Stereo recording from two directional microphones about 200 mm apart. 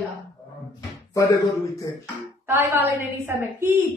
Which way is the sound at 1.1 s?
15° left (ahead or behind).